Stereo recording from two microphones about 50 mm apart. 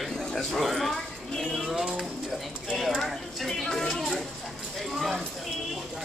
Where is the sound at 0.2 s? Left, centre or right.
Centre.